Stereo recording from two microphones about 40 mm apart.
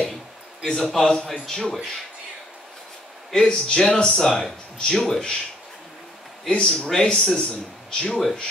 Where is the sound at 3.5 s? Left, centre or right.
Left.